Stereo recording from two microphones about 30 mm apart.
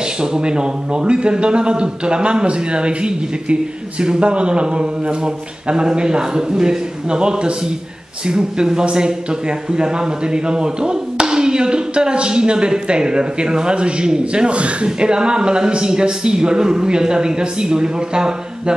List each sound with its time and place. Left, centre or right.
0.2 s a man's voice: right
7.1 s a man's voice: right
15.0 s speech: right